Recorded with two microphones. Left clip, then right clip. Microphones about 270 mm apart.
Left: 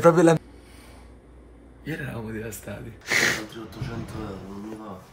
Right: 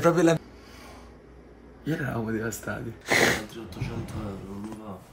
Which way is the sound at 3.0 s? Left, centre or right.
Centre.